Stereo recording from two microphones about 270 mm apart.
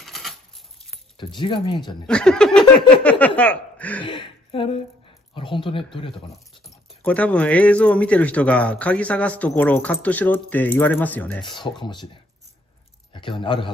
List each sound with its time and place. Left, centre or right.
0.0 s a sound: centre
1.1 s speech: centre
2.0 s speech: centre
4.0 s a woman's voice: centre
7.0 s speech: centre
11.4 s speech: centre
13.1 s a man's voice: centre